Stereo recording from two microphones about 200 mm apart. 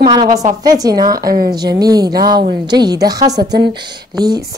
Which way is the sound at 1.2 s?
45° right (ahead or behind).